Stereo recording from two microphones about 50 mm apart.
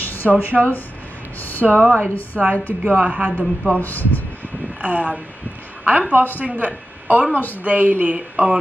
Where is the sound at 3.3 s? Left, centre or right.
Left.